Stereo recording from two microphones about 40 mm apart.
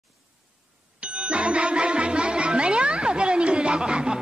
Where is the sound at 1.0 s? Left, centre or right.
Right.